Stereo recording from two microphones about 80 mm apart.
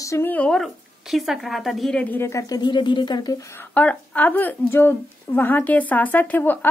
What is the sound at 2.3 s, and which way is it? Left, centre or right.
Speech, left.